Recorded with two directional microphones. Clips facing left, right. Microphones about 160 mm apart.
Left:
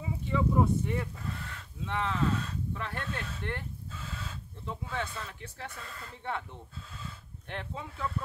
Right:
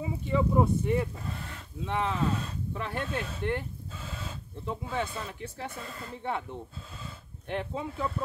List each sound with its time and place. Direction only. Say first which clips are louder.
0.0 s speech: right 3 dB; 15° right (ahead or behind)
7.4 s speech: right 7 dB; 10° right (ahead or behind)